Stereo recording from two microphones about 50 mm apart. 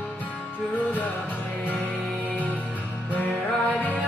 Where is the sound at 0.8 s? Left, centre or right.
Left.